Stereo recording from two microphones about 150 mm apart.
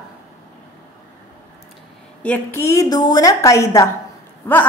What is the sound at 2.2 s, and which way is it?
A woman's voice, 15° left (ahead or behind).